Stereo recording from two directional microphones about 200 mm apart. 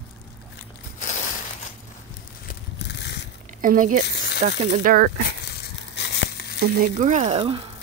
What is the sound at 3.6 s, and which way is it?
Speech, 40° right (ahead or behind).